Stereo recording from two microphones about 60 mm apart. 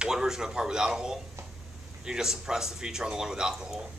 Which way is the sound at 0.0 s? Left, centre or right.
Centre.